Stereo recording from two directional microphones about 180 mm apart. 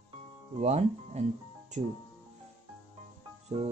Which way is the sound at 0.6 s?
40° right (ahead or behind).